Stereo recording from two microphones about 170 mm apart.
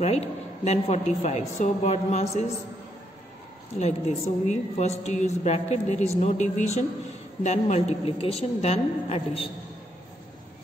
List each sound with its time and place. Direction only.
0.0 s a woman's voice: 40° left (ahead or behind)
3.8 s a woman's voice: 40° left (ahead or behind)